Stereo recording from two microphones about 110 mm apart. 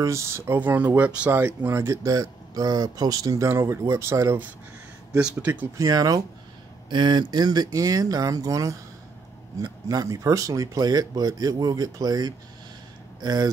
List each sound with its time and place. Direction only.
0.0 s speech: 25° right (ahead or behind)
5.1 s speech: 10° right (ahead or behind)
5.8 s speech: 35° right (ahead or behind)